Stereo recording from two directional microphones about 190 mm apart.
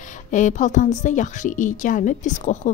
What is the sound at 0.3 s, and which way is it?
A woman's voice, 40° left (ahead or behind).